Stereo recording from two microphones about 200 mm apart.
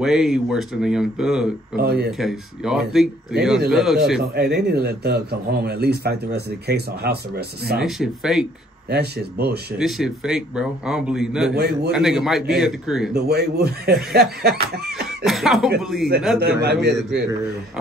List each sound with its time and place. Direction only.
0.0 s a man's voice: centre (ahead or behind)
1.8 s a man's voice: 50° right (ahead or behind)
2.0 s a man's voice: centre (ahead or behind)
4.4 s a man's voice: 55° right (ahead or behind)
7.8 s a man's voice: centre (ahead or behind)
8.9 s a man's voice: 50° right (ahead or behind)
9.8 s a man's voice: centre (ahead or behind)
11.5 s a man's voice: 55° right (ahead or behind)
11.9 s a man's voice: centre (ahead or behind)
13.1 s a man's voice: 50° right (ahead or behind)
15.2 s a man's voice: centre (ahead or behind)
16.6 s a man's voice: 55° right (ahead or behind)